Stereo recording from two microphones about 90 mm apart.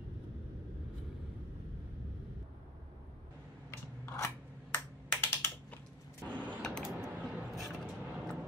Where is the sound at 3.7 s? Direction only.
30° left (ahead or behind).